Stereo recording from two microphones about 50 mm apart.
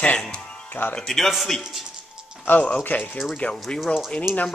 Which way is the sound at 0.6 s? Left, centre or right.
Left.